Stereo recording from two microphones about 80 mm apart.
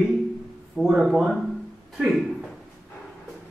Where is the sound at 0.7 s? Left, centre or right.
Centre.